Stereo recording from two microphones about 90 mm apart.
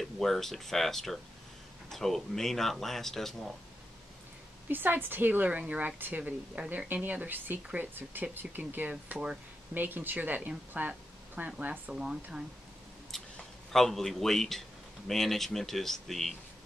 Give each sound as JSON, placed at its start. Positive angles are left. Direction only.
{"t": 0.0, "sound": "speech", "side_deg": 5}
{"t": 4.6, "sound": "a woman's voice", "side_deg": -20}
{"t": 13.1, "sound": "a sound", "side_deg": 5}
{"t": 13.7, "sound": "speech", "side_deg": 5}